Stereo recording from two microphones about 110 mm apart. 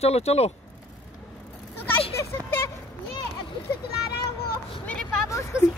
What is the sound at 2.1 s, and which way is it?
Speech, 25° left (ahead or behind).